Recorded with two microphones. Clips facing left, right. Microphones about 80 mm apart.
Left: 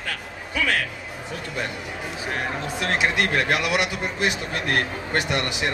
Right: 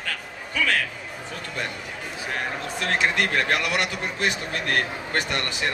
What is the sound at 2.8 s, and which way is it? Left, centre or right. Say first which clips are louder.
Speech: even; centre.